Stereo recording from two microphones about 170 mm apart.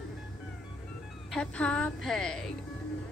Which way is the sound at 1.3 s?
5° left (ahead or behind).